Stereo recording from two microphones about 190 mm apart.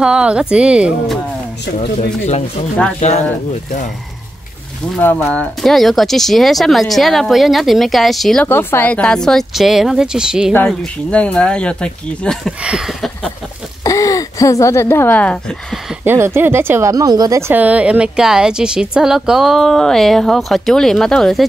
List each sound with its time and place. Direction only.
0.0 s speech: 5° right (ahead or behind)
1.8 s speech: 35° left (ahead or behind)
4.9 s speech: 10° left (ahead or behind)
13.8 s speech: 15° left (ahead or behind)
16.0 s speech: 10° right (ahead or behind)